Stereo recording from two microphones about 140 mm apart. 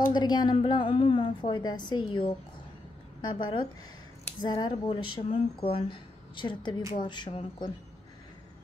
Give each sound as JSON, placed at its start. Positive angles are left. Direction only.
{"t": 0.1, "sound": "speech", "side_deg": 30}